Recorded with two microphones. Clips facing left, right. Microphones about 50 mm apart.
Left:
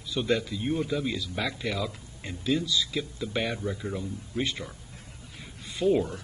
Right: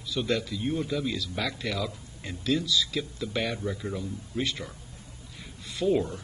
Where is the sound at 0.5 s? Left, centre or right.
Left.